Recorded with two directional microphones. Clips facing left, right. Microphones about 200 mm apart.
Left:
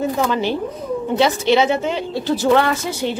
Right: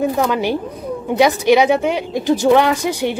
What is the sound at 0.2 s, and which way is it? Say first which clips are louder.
A woman's voice: right 2 dB; 15° right (ahead or behind).